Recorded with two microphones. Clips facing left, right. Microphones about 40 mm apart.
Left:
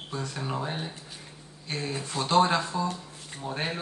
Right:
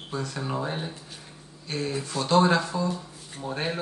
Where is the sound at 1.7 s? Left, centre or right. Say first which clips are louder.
Right 3 dB; left.